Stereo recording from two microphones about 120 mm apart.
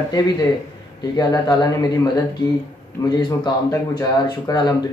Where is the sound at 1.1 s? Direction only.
30° left (ahead or behind).